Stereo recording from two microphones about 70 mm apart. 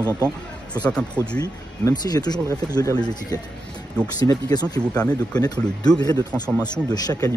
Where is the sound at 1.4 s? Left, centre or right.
Left.